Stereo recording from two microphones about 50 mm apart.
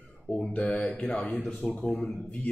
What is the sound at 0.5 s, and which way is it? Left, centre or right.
Speech, left.